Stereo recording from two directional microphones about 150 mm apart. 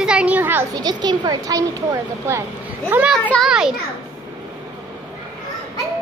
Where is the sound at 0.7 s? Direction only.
30° right (ahead or behind); by 3.7 s 5° right (ahead or behind).